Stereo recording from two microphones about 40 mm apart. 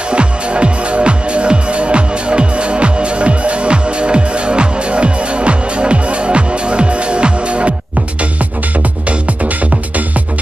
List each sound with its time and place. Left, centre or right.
0.1 s music: right